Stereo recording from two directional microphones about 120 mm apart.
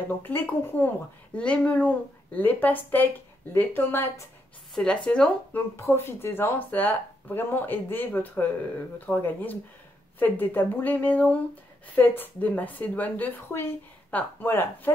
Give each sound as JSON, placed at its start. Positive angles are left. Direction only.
{"t": 0.2, "sound": "a woman's voice", "side_deg": 15}